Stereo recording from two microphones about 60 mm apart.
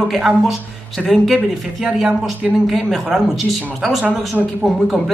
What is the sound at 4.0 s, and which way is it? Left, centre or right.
Speech, right.